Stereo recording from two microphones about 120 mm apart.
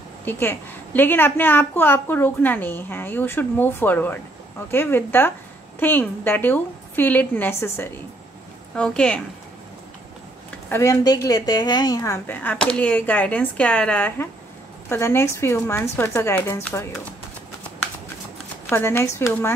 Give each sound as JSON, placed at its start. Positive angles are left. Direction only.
{"t": 0.2, "sound": "a woman's voice", "side_deg": 15}
{"t": 8.7, "sound": "a woman's voice", "side_deg": 10}
{"t": 10.7, "sound": "speech", "side_deg": 25}
{"t": 12.4, "sound": "a woman's voice", "side_deg": 10}
{"t": 18.7, "sound": "speech", "side_deg": 20}